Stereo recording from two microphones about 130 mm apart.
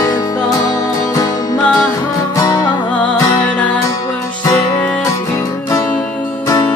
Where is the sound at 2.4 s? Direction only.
25° left (ahead or behind).